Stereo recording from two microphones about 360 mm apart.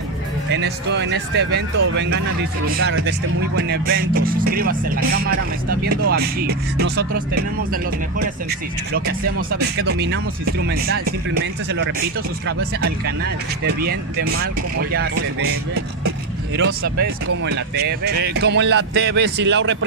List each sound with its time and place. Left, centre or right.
0.5 s speech: right
9.6 s speech: right
12.4 s speech: right
16.5 s speech: right